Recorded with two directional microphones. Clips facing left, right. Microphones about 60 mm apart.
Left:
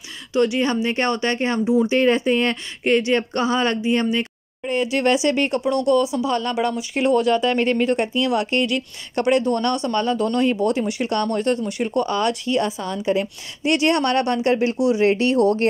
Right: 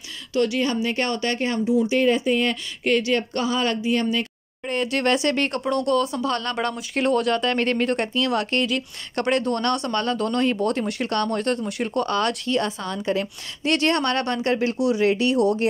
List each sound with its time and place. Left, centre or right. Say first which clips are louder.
0.3 s speech: left 3 dB; left
2.8 s speech: left 3 dB; left
4.6 s speech: left 3 dB; centre; by 15.6 s left